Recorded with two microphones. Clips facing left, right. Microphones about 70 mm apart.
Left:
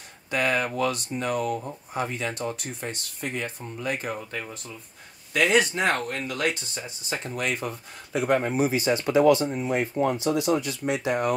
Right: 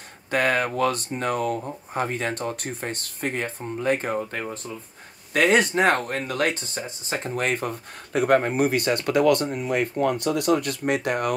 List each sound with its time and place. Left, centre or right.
0.3 s speech: right
5.3 s speech: right